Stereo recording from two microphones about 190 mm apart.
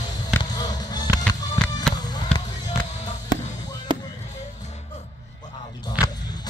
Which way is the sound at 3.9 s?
25° right (ahead or behind).